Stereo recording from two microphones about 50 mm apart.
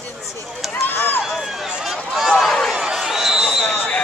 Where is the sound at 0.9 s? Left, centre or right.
Left.